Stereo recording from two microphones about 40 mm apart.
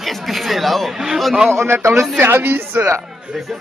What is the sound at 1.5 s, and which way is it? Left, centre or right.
Speech, right.